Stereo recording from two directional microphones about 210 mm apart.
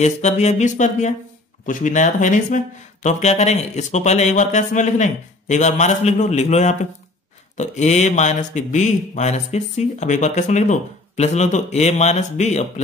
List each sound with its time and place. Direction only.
0.0 s speech: 30° left (ahead or behind)